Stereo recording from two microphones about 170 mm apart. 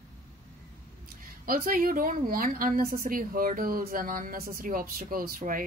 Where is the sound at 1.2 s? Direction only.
55° right (ahead or behind).